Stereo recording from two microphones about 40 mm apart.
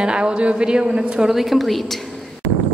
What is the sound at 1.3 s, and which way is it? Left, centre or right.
A woman's voice, centre.